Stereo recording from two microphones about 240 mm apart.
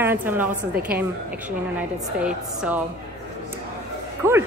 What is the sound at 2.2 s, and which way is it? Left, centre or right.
Speech, centre.